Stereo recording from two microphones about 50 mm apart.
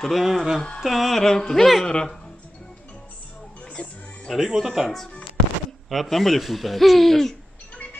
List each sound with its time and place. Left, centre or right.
0.0 s speech: centre
3.6 s music: left
4.5 s speech: centre
7.7 s music: left